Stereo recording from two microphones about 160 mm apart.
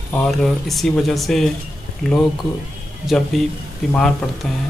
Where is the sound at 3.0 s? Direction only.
Centre (ahead or behind).